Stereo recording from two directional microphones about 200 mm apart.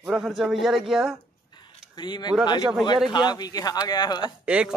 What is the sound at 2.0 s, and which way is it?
Speech, 20° left (ahead or behind).